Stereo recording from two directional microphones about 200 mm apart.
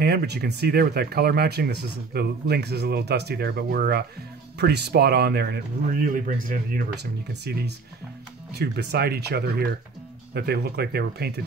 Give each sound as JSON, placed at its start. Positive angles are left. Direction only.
{"t": 0.0, "sound": "speech", "side_deg": -55}